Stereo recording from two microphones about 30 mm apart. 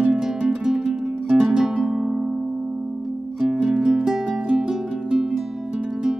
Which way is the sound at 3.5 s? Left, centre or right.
Centre.